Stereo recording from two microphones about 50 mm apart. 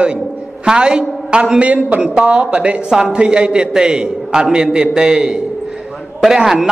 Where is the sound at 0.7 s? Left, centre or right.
Centre.